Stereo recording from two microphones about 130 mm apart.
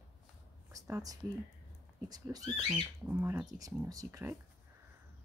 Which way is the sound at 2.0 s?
30° right (ahead or behind).